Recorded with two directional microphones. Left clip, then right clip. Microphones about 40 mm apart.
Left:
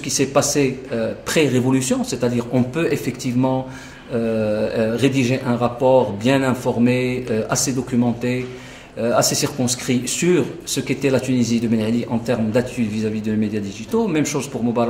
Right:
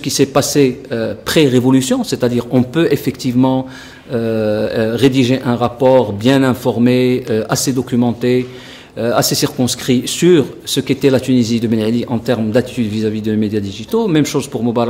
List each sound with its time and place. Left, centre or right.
0.2 s speech: left
3.3 s speech: centre
4.1 s speech: left